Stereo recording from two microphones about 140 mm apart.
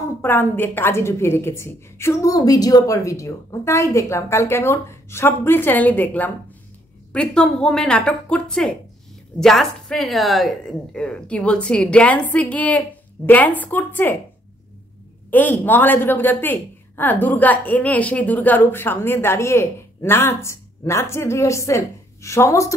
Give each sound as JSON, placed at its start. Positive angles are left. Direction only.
{"t": 0.0, "sound": "a woman's voice", "side_deg": 15}
{"t": 15.3, "sound": "speech", "side_deg": 10}